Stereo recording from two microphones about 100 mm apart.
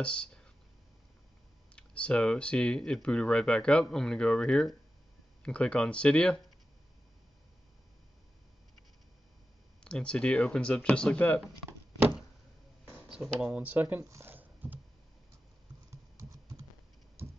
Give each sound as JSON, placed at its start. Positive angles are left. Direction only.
{"t": 0.0, "sound": "speech", "side_deg": 10}
{"t": 1.8, "sound": "speech", "side_deg": 10}
{"t": 9.8, "sound": "speech", "side_deg": 10}
{"t": 13.4, "sound": "speech", "side_deg": -15}
{"t": 14.0, "sound": "speech", "side_deg": -30}
{"t": 14.3, "sound": "a sound", "side_deg": -20}
{"t": 15.9, "sound": "typing", "side_deg": -35}
{"t": 17.2, "sound": "a sound", "side_deg": -25}